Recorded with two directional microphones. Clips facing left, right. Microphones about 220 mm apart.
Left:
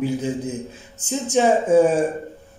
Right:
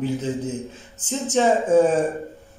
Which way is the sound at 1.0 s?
10° left (ahead or behind).